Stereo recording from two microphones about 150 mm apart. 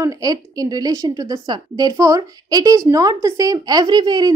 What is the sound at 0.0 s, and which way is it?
A woman's voice, 25° right (ahead or behind).